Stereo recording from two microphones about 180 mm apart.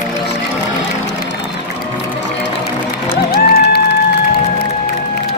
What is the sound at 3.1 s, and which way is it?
Music, 55° left (ahead or behind).